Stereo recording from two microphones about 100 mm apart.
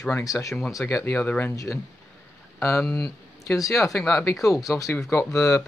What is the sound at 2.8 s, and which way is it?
Speech, 5° left (ahead or behind).